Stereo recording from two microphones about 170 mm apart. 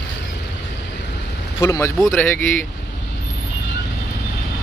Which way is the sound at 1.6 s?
20° left (ahead or behind).